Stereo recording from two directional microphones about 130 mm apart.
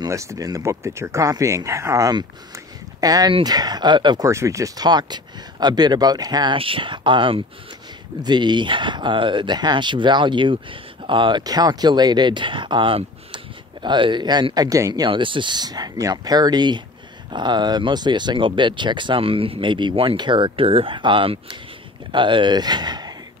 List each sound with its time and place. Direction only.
0.0 s speech: 25° right (ahead or behind)
4.3 s speech: 25° right (ahead or behind)
15.0 s speech: 40° right (ahead or behind)